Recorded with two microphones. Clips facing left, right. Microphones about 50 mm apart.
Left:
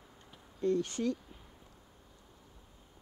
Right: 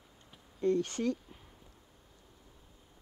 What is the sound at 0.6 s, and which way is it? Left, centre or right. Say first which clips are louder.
Speech: right 1 dB; right.